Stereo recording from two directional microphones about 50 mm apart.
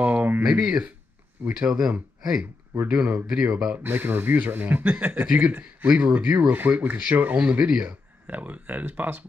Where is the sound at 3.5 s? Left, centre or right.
Centre.